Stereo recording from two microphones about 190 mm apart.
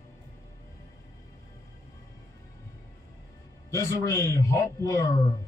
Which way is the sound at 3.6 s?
15° left (ahead or behind).